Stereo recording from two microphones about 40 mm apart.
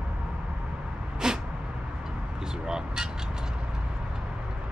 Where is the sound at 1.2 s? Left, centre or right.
Centre.